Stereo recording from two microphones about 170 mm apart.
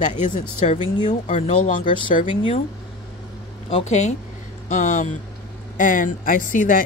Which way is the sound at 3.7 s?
40° left (ahead or behind).